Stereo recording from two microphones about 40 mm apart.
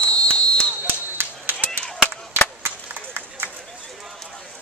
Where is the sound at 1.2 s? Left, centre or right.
Right.